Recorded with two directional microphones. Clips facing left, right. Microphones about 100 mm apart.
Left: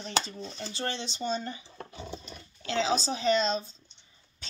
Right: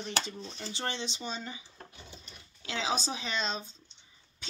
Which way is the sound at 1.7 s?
90° left.